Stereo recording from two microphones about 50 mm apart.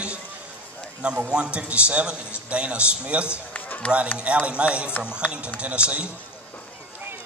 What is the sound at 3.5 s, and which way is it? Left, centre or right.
Run, left.